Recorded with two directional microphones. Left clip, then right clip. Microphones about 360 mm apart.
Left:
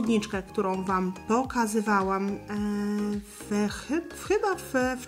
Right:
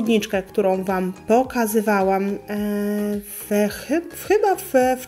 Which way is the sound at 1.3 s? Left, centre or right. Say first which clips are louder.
Right 9 dB; right.